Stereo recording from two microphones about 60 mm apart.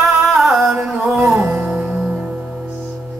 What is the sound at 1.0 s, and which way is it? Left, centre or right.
Music, centre.